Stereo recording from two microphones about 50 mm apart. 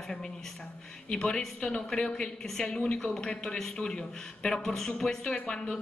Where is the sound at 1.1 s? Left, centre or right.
Centre.